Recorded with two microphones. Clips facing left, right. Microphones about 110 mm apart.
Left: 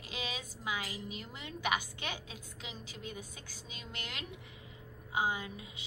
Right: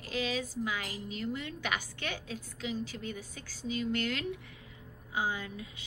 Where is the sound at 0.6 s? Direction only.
15° left (ahead or behind).